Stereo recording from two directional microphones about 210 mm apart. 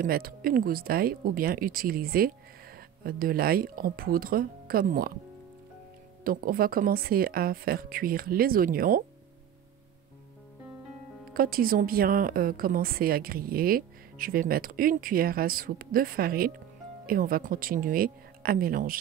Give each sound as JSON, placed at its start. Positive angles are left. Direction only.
{"t": 0.0, "sound": "a woman's voice", "side_deg": -45}
{"t": 6.2, "sound": "a woman's voice", "side_deg": -45}
{"t": 11.3, "sound": "a woman's voice", "side_deg": -45}